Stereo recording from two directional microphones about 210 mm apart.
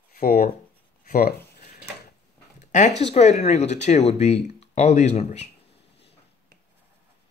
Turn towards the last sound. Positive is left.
turn(degrees=55)  # may be behind; listen again after turning